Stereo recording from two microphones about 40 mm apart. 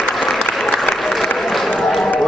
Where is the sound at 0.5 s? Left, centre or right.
Centre.